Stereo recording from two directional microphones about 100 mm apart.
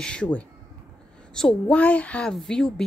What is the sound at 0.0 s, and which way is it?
A woman's voice, 10° left (ahead or behind).